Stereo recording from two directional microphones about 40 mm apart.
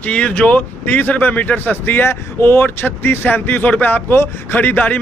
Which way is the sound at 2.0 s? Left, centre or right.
Left.